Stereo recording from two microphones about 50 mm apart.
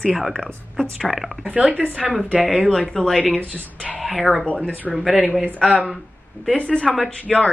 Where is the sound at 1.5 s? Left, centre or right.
Right.